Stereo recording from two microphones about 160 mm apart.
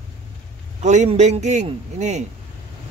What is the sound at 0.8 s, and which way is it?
A man's voice, 45° right (ahead or behind).